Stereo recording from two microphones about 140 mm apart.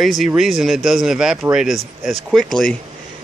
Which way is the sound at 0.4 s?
Centre (ahead or behind).